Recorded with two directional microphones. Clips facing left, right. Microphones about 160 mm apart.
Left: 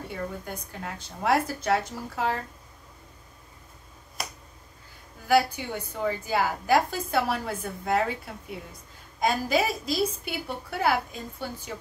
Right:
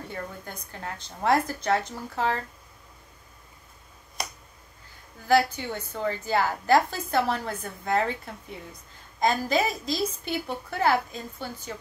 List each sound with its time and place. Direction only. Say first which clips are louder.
0.1 s a woman's voice: left 3 dB; 10° left (ahead or behind)
4.2 s finger snapping: right 1 dB; centre (ahead or behind)
5.3 s a woman's voice: even; 10° left (ahead or behind)
9.2 s a woman's voice: right 1 dB; 5° left (ahead or behind)